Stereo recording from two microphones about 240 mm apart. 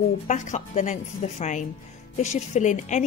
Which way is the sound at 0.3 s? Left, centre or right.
Left.